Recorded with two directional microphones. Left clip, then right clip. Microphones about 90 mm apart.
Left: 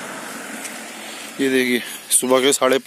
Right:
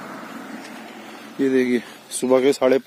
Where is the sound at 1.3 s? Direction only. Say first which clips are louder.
Left 1 dB; 25° right (ahead or behind).